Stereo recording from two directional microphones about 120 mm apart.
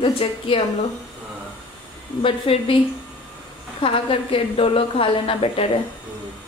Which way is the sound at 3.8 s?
50° left (ahead or behind).